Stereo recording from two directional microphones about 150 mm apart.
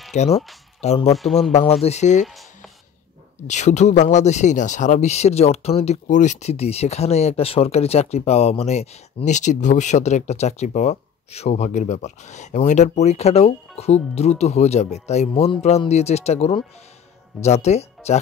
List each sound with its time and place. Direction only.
0.1 s speech: 50° left (ahead or behind)
1.1 s speech: centre (ahead or behind)
1.5 s speech: 45° left (ahead or behind)
2.2 s a sound: centre (ahead or behind)
3.4 s speech: 50° left (ahead or behind)